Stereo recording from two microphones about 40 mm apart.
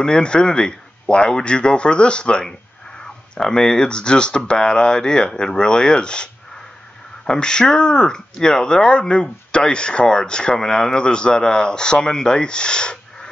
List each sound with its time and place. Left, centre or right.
0.0 s speech: left
7.2 s speech: centre